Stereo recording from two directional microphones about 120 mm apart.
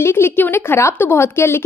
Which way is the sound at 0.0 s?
20° left (ahead or behind).